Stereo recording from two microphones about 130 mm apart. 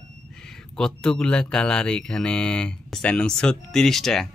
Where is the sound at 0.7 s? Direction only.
5° left (ahead or behind).